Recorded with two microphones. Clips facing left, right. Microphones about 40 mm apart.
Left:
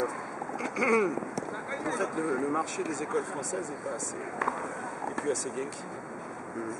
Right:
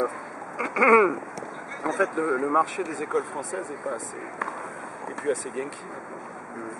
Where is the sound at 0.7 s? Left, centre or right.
Right.